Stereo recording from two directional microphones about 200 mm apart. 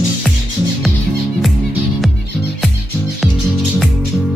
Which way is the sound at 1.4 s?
Centre (ahead or behind).